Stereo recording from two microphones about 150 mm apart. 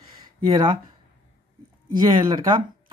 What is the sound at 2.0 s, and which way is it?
Speech, 30° right (ahead or behind).